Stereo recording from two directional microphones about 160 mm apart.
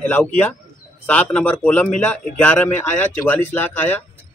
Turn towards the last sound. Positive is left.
turn(degrees=15)  # may be behind; listen again after turning